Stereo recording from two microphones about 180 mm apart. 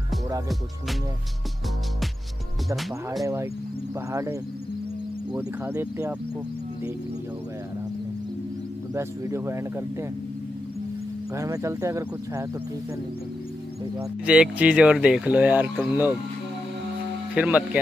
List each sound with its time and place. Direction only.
4.1 s speech: 15° right (ahead or behind)
5.4 s speech: 10° right (ahead or behind)
8.9 s speech: 15° right (ahead or behind)
11.3 s speech: 15° right (ahead or behind)
13.9 s speech: 5° right (ahead or behind)
17.3 s speech: 5° right (ahead or behind)